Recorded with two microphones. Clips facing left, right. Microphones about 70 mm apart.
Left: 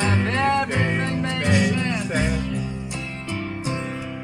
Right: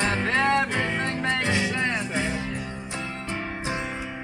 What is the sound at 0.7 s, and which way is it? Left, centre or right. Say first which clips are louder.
Music: left 3 dB; centre.